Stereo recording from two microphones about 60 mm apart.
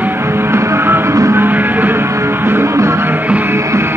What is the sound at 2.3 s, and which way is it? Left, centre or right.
Music, right.